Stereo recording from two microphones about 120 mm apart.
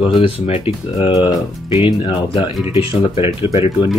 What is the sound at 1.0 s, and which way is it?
Speech, 35° left (ahead or behind).